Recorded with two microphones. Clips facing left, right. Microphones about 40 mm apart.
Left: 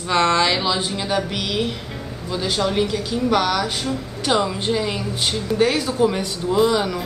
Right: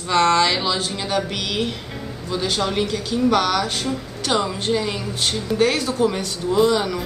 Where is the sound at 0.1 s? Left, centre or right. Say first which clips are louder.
Right 1 dB; centre.